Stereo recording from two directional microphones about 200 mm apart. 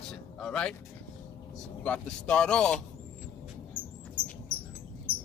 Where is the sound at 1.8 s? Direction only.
5° left (ahead or behind).